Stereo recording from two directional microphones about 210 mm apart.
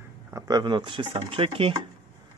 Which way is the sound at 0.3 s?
15° right (ahead or behind).